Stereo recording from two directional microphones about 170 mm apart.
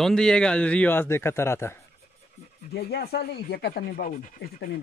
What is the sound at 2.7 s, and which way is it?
Speech, 70° left (ahead or behind).